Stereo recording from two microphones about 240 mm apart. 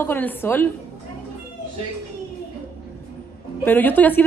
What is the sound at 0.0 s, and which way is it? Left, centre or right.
Speech, centre.